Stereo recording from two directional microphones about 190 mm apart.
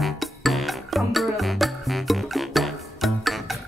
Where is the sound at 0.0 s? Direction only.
Centre (ahead or behind).